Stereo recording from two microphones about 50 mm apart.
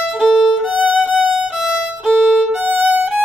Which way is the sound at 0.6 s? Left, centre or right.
Right.